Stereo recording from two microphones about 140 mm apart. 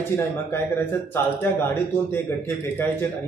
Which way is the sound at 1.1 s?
15° left (ahead or behind).